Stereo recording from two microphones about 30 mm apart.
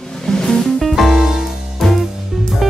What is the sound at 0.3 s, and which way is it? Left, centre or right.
Music, left.